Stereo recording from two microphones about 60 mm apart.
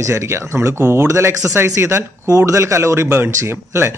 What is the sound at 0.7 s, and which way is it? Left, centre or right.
Speech, right.